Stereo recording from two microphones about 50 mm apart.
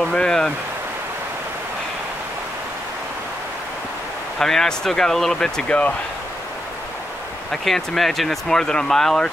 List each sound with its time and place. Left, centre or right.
0.1 s a sound: centre
4.4 s speech: centre
5.7 s speech: left
7.6 s speech: centre